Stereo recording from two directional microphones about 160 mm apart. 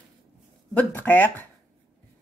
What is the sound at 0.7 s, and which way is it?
Speech, 10° left (ahead or behind).